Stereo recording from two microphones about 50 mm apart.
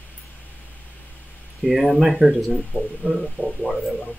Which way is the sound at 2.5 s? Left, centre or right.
Centre.